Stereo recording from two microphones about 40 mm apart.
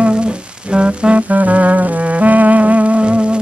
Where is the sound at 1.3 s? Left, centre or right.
Right.